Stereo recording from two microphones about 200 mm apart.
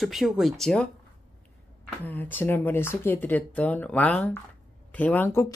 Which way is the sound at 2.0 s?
10° left (ahead or behind).